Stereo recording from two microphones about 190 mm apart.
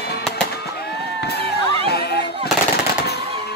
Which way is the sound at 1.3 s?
60° left (ahead or behind).